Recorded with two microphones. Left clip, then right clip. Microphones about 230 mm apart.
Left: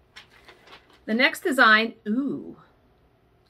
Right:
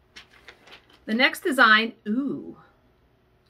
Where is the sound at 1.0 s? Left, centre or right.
Centre.